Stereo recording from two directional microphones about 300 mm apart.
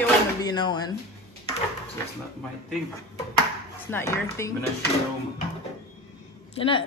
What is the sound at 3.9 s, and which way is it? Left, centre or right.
Speech, centre.